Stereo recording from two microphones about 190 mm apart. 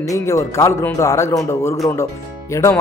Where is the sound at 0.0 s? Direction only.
15° left (ahead or behind).